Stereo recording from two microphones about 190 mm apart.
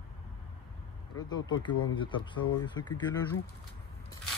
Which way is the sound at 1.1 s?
20° left (ahead or behind).